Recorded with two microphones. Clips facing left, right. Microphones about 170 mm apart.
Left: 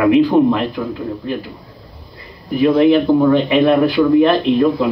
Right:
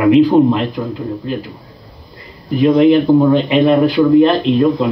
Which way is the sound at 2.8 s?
20° right (ahead or behind).